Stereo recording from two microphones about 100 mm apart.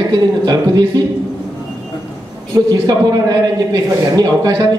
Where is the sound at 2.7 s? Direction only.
40° right (ahead or behind).